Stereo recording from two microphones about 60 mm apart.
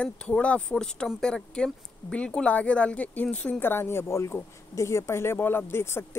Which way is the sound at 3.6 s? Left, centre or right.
Left.